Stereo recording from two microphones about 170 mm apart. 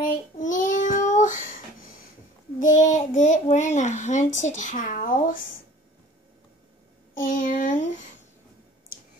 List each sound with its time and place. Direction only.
0.0 s child singing: 50° left (ahead or behind)
2.6 s a child's voice: 50° left (ahead or behind)
7.2 s a child's voice: 50° left (ahead or behind)